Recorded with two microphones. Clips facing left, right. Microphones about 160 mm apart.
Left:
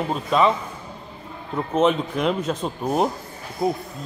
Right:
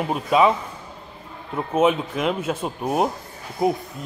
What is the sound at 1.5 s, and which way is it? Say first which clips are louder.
Speech: even; 5° right (ahead or behind).